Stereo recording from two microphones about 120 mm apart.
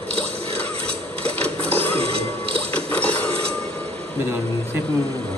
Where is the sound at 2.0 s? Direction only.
55° right (ahead or behind).